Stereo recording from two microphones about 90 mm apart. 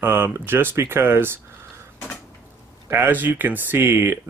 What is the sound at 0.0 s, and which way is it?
Speech, 25° right (ahead or behind).